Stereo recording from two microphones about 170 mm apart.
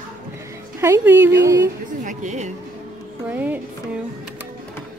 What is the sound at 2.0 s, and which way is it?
Speech, 45° right (ahead or behind).